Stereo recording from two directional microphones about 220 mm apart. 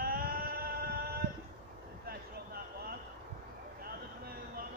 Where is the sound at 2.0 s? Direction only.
45° right (ahead or behind).